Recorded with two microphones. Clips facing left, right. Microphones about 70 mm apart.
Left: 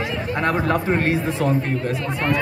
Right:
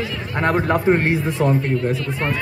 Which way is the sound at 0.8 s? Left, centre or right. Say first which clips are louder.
Right 3 dB; right.